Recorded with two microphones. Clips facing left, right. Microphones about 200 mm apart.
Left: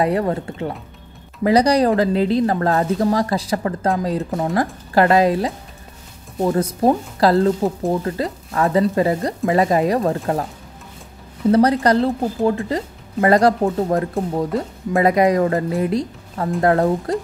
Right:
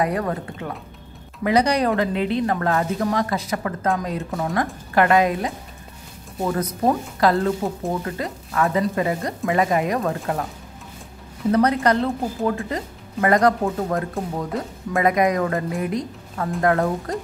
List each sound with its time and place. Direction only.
0.0 s a woman's voice: 30° left (ahead or behind)
11.5 s a woman's voice: 35° left (ahead or behind)